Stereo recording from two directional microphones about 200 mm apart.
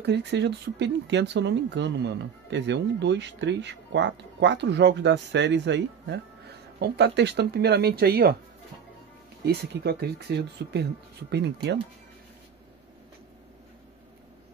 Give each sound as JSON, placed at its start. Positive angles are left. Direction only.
{"t": 0.0, "sound": "speech", "side_deg": -55}
{"t": 9.4, "sound": "speech", "side_deg": -55}